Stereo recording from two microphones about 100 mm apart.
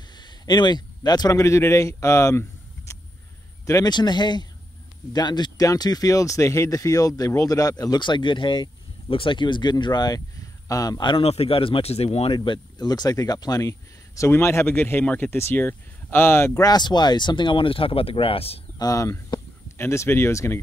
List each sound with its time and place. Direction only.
0.1 s speech: 45° left (ahead or behind); by 2.4 s 30° left (ahead or behind)
2.9 s vehicle: 30° left (ahead or behind)
3.6 s speech: 30° left (ahead or behind)
3.9 s speech: 45° left (ahead or behind)
11.1 s speech: 80° left
12.4 s speech: 45° left (ahead or behind); by 16.6 s 25° left (ahead or behind)
16.6 s speech: 45° left (ahead or behind); by 18.6 s 75° left (ahead or behind)
18.8 s speech: 35° left (ahead or behind)